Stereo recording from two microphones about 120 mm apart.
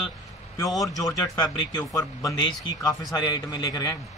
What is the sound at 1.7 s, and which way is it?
A man's voice, 30° left (ahead or behind).